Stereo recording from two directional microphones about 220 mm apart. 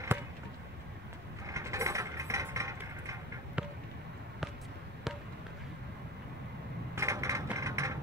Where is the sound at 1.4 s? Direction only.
15° right (ahead or behind).